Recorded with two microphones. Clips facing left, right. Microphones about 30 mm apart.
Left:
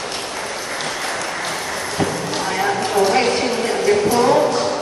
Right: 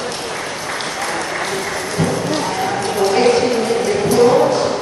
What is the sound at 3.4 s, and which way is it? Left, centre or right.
Ping, centre.